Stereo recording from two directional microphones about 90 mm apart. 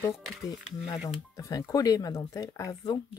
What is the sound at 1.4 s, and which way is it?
Speech, 40° left (ahead or behind).